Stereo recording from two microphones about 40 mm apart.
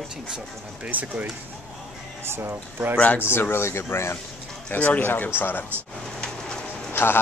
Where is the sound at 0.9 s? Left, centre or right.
Right.